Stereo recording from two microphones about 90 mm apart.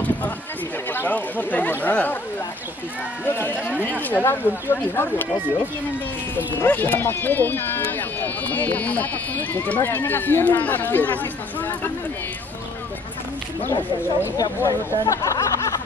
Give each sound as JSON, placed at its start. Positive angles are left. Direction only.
{"t": 0.9, "sound": "speech", "side_deg": 20}
{"t": 3.3, "sound": "speech", "side_deg": 25}
{"t": 6.3, "sound": "speech", "side_deg": 25}
{"t": 14.3, "sound": "speech", "side_deg": 40}